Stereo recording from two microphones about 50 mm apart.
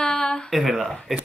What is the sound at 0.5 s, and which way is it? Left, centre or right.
Speech, centre.